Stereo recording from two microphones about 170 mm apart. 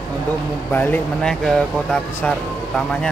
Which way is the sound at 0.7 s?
10° left (ahead or behind).